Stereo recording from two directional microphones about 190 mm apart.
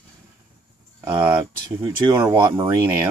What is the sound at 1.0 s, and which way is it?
Speech, 15° right (ahead or behind).